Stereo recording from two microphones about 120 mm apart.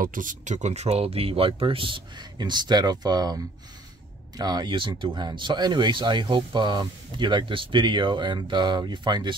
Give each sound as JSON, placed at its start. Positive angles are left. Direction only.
{"t": 0.2, "sound": "speech", "side_deg": -90}
{"t": 4.4, "sound": "speech", "side_deg": -35}